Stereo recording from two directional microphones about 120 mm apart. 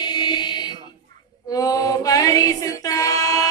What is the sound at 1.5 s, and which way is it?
Female singing, 30° left (ahead or behind).